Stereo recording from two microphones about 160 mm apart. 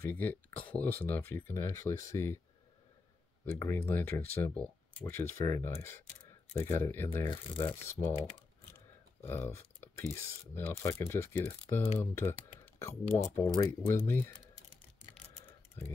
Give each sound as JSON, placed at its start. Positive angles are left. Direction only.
{"t": 0.0, "sound": "speech", "side_deg": 10}
{"t": 3.5, "sound": "speech", "side_deg": 15}
{"t": 9.2, "sound": "speech", "side_deg": 15}